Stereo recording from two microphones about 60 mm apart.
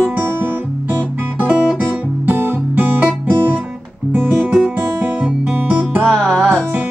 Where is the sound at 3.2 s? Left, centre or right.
Right.